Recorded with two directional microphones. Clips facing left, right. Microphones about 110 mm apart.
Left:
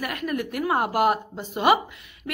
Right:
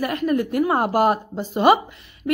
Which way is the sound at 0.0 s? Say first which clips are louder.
Right 7 dB; 30° right (ahead or behind).